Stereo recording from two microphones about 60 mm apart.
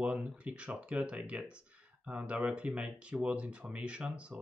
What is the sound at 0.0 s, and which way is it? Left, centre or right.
Speech, right.